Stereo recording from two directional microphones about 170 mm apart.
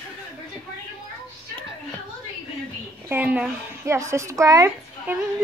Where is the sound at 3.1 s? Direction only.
10° right (ahead or behind).